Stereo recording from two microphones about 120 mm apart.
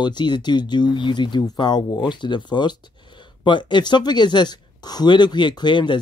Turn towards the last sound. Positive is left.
turn(degrees=40)  # may be behind; listen again after turning